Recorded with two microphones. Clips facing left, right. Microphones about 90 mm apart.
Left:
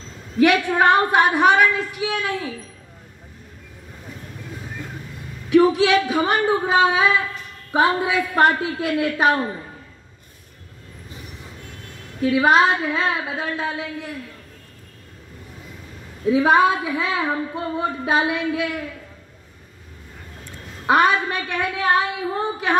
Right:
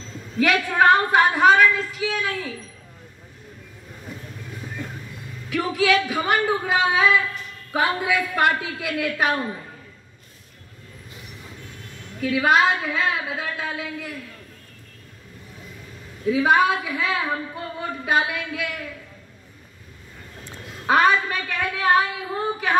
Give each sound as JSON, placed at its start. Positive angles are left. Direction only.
{"t": 0.4, "sound": "a woman's voice", "side_deg": 15}
{"t": 5.5, "sound": "speech", "side_deg": 20}
{"t": 12.2, "sound": "speech", "side_deg": 25}
{"t": 16.3, "sound": "speech", "side_deg": 30}
{"t": 20.8, "sound": "a woman's voice", "side_deg": 15}